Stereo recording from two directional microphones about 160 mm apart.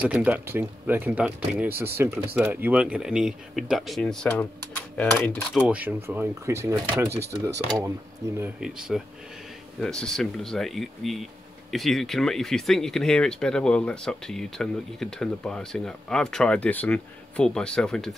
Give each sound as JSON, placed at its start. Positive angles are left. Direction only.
{"t": 0.0, "sound": "speech", "side_deg": -10}
{"t": 5.7, "sound": "speech", "side_deg": -10}
{"t": 8.5, "sound": "speech", "side_deg": -5}